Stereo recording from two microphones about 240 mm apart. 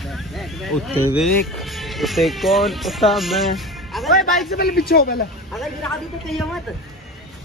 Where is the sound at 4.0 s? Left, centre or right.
Centre.